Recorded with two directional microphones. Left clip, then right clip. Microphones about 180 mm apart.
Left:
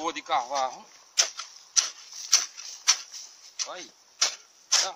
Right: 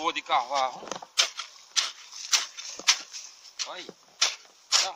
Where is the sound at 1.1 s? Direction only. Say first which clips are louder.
Even; 10° right (ahead or behind); by 4.9 s 5° left (ahead or behind).